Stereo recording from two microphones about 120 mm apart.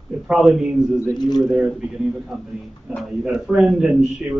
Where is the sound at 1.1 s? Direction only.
35° left (ahead or behind).